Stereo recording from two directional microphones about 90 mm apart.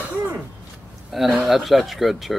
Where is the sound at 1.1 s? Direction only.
Centre (ahead or behind).